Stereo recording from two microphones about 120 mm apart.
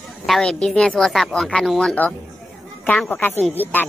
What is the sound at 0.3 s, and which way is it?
Speech, 5° left (ahead or behind).